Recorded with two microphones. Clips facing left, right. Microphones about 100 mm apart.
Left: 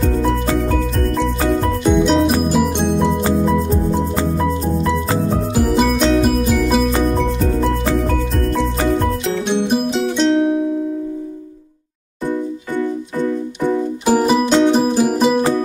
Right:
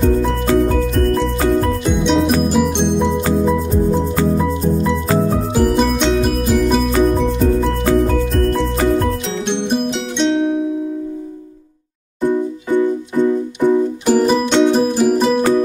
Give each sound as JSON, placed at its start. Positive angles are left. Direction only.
{"t": 0.6, "sound": "music", "side_deg": 0}
{"t": 9.5, "sound": "music", "side_deg": 5}
{"t": 12.3, "sound": "music", "side_deg": -15}
{"t": 14.0, "sound": "music", "side_deg": 10}